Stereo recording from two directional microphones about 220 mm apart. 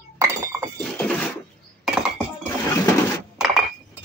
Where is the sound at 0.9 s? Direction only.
5° left (ahead or behind).